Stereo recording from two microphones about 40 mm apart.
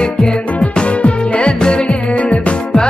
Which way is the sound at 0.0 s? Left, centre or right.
Left.